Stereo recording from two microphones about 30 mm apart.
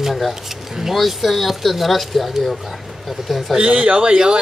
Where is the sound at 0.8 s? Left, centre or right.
Centre.